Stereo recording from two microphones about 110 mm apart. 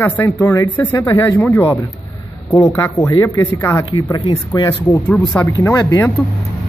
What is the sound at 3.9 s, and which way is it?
Speech, 50° left (ahead or behind).